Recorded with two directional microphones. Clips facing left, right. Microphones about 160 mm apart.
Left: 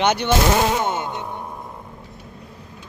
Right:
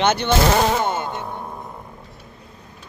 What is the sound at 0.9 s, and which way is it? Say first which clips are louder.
Music: even; 15° left (ahead or behind).